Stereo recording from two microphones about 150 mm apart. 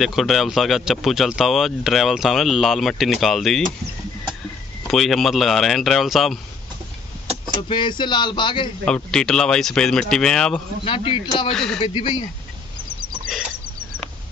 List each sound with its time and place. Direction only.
0.0 s speech: centre (ahead or behind)
4.8 s speech: centre (ahead or behind)
7.6 s speech: 30° left (ahead or behind)
8.8 s speech: 5° left (ahead or behind)
10.8 s speech: 35° left (ahead or behind)
11.5 s speech: 5° left (ahead or behind)
11.8 s speech: 35° left (ahead or behind)